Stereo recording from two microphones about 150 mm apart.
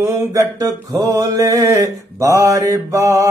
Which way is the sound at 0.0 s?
20° right (ahead or behind).